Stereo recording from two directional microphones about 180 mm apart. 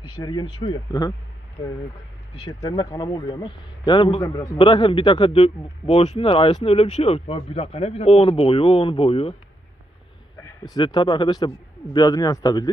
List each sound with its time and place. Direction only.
0.2 s a man's voice: 25° left (ahead or behind)
2.4 s a man's voice: 20° left (ahead or behind)
10.8 s a man's voice: 25° left (ahead or behind)